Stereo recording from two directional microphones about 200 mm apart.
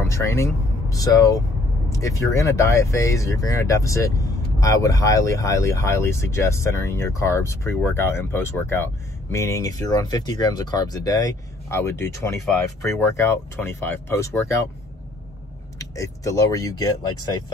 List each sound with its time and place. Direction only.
0.1 s speech: 15° left (ahead or behind)
15.8 s speech: 15° left (ahead or behind)